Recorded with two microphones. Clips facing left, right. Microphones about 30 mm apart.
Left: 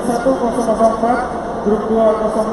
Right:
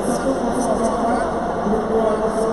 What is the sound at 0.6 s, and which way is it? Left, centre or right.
Speech, centre.